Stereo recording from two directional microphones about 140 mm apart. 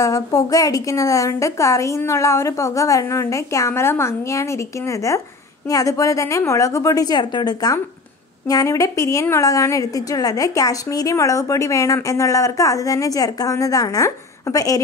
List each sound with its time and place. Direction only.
0.0 s a woman's voice: 25° left (ahead or behind)